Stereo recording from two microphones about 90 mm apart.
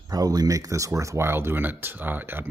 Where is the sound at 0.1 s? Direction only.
45° right (ahead or behind).